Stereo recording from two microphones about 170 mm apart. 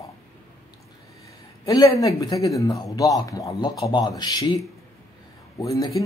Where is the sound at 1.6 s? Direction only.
20° left (ahead or behind).